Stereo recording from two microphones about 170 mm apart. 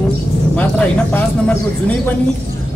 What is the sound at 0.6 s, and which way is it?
Speech, 10° left (ahead or behind).